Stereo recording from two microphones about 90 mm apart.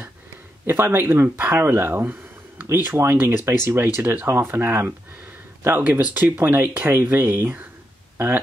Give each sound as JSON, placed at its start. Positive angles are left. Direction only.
{"t": 0.7, "sound": "speech", "side_deg": -25}